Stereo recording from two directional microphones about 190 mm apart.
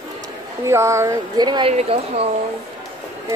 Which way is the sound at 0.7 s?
15° right (ahead or behind).